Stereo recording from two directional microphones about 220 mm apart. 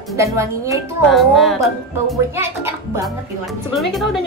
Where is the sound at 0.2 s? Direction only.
15° right (ahead or behind).